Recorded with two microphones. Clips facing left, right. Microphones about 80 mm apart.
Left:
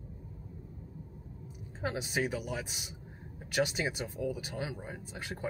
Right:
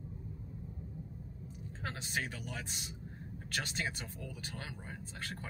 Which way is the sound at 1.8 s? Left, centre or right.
Centre.